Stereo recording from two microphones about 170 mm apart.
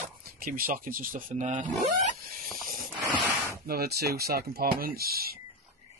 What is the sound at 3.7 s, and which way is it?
Speech, 65° right (ahead or behind).